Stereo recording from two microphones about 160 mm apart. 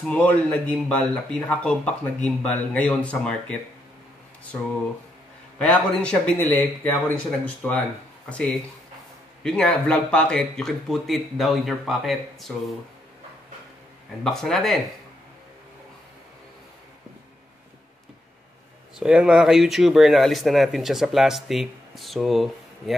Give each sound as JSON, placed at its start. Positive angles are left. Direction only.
{"t": 0.0, "sound": "speech", "side_deg": 10}
{"t": 5.6, "sound": "a man's voice", "side_deg": 5}
{"t": 14.2, "sound": "a man's voice", "side_deg": 5}
{"t": 18.9, "sound": "a man's voice", "side_deg": -5}